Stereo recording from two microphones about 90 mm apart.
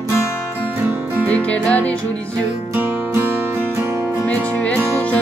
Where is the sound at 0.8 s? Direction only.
20° right (ahead or behind).